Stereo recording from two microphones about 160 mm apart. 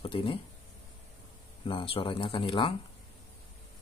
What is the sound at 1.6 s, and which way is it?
Speech, 35° left (ahead or behind).